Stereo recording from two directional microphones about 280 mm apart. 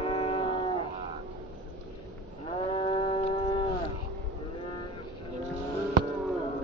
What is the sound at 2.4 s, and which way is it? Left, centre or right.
Livestock, left.